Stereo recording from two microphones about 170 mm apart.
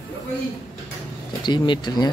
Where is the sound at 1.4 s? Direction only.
25° left (ahead or behind).